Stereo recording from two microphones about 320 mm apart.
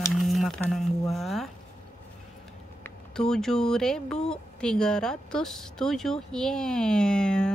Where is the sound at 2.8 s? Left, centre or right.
Centre.